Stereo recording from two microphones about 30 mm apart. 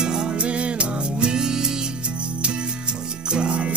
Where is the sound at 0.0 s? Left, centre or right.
Right.